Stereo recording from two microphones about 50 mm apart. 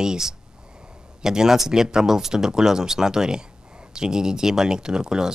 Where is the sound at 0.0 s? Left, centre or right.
Centre.